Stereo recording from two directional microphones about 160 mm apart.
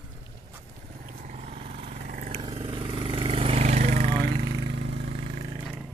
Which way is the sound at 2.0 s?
55° right (ahead or behind).